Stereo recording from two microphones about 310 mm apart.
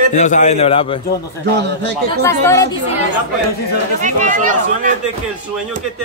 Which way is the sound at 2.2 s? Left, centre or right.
Centre.